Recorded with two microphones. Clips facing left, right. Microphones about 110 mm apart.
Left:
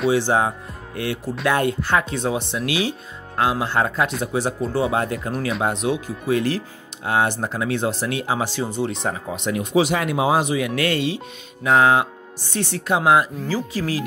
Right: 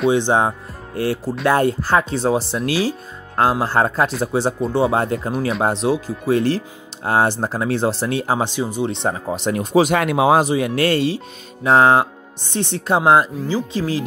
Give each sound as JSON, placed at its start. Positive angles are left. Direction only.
{"t": 0.1, "sound": "speech", "side_deg": -25}
{"t": 0.9, "sound": "speech", "side_deg": -35}
{"t": 8.5, "sound": "speech", "side_deg": -15}
{"t": 8.9, "sound": "speech", "side_deg": -30}
{"t": 9.9, "sound": "speech", "side_deg": -65}
{"t": 10.4, "sound": "speech", "side_deg": -35}